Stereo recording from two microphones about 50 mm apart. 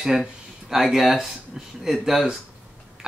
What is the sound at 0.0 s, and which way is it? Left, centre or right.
Speech, centre.